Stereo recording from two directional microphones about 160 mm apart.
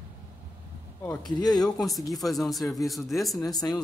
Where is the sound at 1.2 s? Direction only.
25° left (ahead or behind).